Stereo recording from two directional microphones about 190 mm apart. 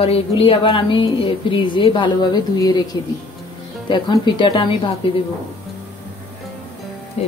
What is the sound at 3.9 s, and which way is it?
Speech, 25° left (ahead or behind).